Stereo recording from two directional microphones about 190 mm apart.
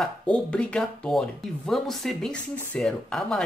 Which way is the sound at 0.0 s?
5° left (ahead or behind).